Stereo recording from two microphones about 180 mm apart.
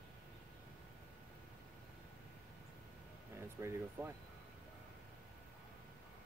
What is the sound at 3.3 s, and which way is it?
Speech, 15° right (ahead or behind).